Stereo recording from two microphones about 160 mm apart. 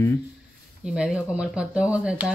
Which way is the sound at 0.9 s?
5° right (ahead or behind).